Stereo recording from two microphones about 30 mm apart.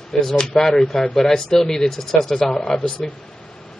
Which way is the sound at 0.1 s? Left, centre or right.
Centre.